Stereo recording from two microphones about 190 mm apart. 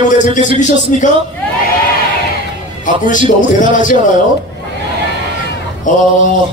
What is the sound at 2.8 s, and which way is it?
A man's voice, 45° left (ahead or behind).